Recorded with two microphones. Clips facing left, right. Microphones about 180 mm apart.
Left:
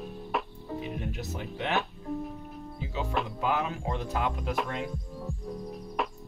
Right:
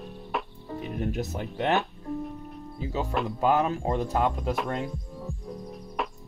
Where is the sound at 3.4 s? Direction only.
45° right (ahead or behind).